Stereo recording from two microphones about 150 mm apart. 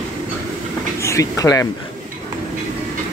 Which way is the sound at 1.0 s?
20° left (ahead or behind).